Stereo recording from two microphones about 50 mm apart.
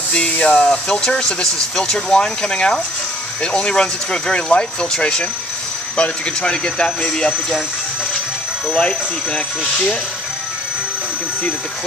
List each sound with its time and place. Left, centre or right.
0.4 s speech: centre
2.1 s speech: centre
8.7 s speech: centre